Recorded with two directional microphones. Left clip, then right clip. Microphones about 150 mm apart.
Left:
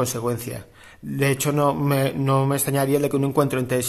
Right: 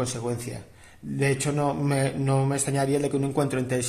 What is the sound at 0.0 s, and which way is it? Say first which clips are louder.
A man's voice: left 5 dB; 40° left (ahead or behind).